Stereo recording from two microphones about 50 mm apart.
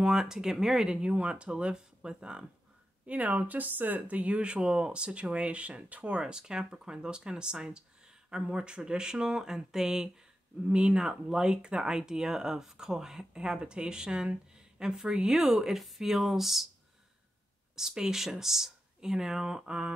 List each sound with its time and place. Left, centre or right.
0.0 s speech: centre
3.1 s speech: right; by 10.0 s centre
10.7 s speech: right
11.0 s speech: centre
17.7 s speech: centre